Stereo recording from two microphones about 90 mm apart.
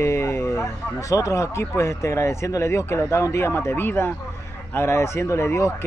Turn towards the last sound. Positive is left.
turn(degrees=35)  # may be behind; listen again after turning